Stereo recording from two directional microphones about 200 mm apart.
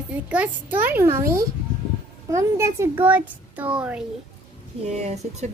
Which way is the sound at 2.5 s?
15° right (ahead or behind).